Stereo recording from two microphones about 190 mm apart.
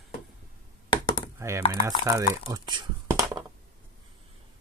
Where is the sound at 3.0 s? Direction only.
20° right (ahead or behind).